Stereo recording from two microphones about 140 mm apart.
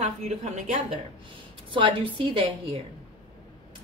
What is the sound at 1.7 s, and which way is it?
Speech, 40° right (ahead or behind).